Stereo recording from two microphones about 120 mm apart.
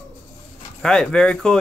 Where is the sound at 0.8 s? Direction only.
5° left (ahead or behind).